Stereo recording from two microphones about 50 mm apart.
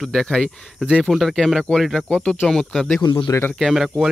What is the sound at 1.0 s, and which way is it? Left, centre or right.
Speech, centre.